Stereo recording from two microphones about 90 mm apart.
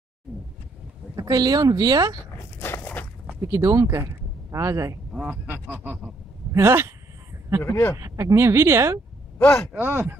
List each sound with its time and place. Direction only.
1.1 s speech: 45° right (ahead or behind)
2.6 s a sound: 25° left (ahead or behind)
3.5 s speech: 35° right (ahead or behind)
5.1 s speech: 10° right (ahead or behind); by 6.9 s 30° right (ahead or behind)
7.6 s speech: 20° left (ahead or behind)
8.0 s speech: 35° right (ahead or behind)
9.4 s speech: 25° left (ahead or behind)
9.8 s speech: 20° right (ahead or behind)